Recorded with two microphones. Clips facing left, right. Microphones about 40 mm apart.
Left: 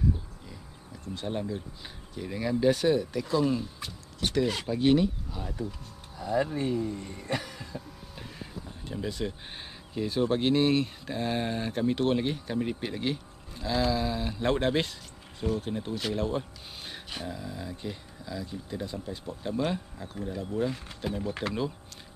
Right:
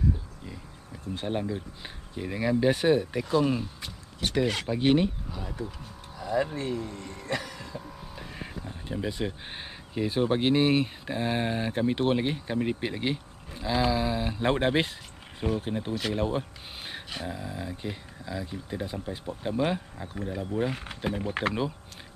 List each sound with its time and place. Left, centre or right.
1.1 s speech: right
3.8 s speech: centre
4.6 s speech: right
6.5 s speech: right
8.4 s speech: right